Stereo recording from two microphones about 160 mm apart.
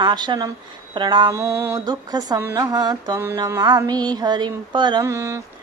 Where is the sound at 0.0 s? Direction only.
25° right (ahead or behind).